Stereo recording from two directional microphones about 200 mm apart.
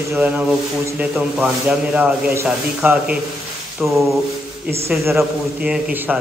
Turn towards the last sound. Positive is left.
turn(degrees=-10)  # may be behind; listen again after turning